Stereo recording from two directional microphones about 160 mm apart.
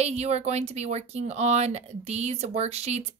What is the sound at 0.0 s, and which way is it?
Speech, 40° right (ahead or behind).